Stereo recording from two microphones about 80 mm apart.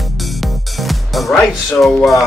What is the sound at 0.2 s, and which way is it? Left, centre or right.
Music, centre.